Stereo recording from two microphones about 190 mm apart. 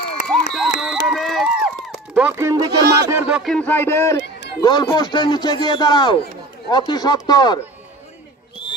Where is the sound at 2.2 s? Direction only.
10° right (ahead or behind).